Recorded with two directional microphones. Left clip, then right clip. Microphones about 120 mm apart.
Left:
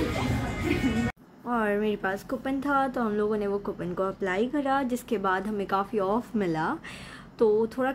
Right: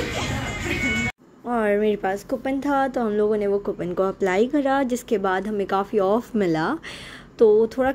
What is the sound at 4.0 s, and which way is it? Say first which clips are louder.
A woman's voice: right 7 dB; 40° right (ahead or behind).